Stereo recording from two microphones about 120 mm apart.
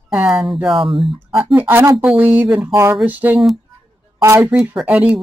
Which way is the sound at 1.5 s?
20° right (ahead or behind).